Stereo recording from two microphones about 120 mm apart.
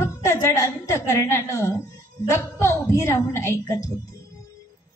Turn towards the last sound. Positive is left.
turn(degrees=25)  # may be behind; listen again after turning